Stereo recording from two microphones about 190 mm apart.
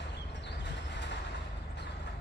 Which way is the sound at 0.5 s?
65° left (ahead or behind).